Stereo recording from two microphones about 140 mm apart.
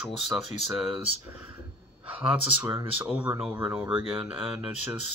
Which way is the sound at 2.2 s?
10° right (ahead or behind).